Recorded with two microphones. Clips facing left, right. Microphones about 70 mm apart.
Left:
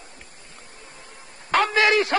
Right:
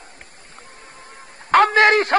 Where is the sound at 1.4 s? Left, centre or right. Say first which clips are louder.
Right 6 dB; right.